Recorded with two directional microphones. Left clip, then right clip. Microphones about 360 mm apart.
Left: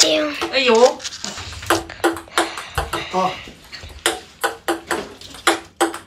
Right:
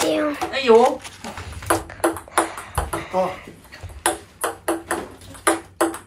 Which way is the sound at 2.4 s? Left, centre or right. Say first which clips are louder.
Left 3 dB; centre.